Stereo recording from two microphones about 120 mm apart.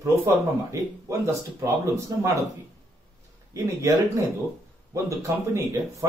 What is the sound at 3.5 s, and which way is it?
Speech, 25° right (ahead or behind).